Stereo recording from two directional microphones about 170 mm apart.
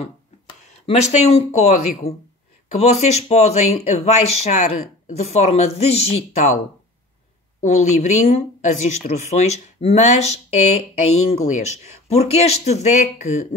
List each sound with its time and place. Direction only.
0.7 s speech: 40° left (ahead or behind)
2.8 s speech: 40° left (ahead or behind)
7.6 s speech: 45° left (ahead or behind)